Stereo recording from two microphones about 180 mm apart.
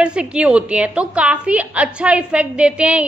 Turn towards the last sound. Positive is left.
turn(degrees=-5)  # may be behind; listen again after turning